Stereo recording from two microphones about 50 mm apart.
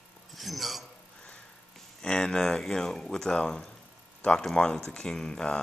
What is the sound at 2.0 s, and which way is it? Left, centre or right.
Speech, centre.